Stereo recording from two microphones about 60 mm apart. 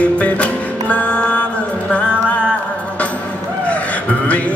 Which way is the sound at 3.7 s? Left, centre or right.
Left.